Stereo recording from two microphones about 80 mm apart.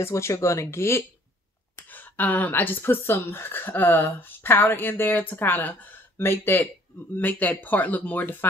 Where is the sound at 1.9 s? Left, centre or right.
Left.